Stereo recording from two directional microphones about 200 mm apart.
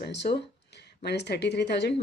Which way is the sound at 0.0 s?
60° left (ahead or behind).